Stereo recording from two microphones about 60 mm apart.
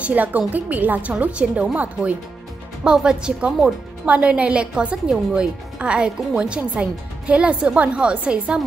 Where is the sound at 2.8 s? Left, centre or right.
Centre.